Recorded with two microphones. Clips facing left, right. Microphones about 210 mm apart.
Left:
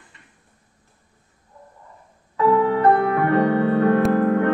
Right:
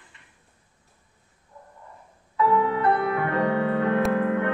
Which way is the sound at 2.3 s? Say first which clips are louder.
Left 5 dB; 40° left (ahead or behind).